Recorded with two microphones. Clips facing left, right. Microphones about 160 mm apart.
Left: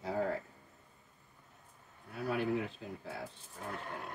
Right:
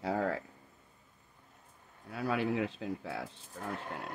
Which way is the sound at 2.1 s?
90° right.